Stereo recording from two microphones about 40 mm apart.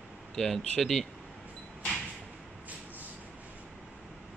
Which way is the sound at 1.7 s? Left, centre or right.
Centre.